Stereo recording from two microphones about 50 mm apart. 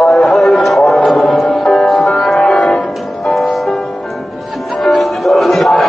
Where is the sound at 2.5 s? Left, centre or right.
Centre.